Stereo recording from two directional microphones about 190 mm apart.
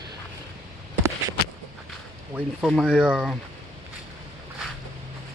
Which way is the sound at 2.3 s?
5° right (ahead or behind).